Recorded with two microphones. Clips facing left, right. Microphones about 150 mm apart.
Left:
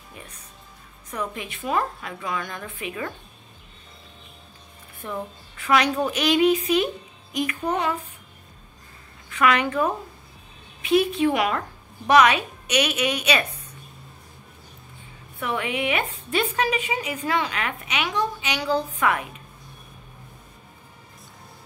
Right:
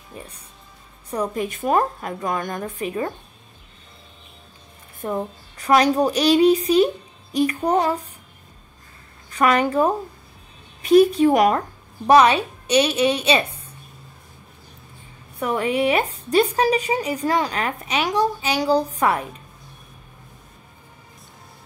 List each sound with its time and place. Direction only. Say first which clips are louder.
1.1 s a woman's voice: right 7 dB; 40° right (ahead or behind)
5.0 s a woman's voice: right 6 dB; 40° right (ahead or behind)
9.3 s a woman's voice: right 3 dB; 40° right (ahead or behind)
15.3 s a woman's voice: right 6 dB; 40° right (ahead or behind)